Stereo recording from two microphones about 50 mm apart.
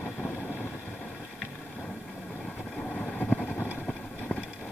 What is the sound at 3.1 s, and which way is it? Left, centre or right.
Vehicle, left.